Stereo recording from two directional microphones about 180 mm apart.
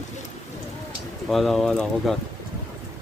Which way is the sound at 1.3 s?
Centre (ahead or behind).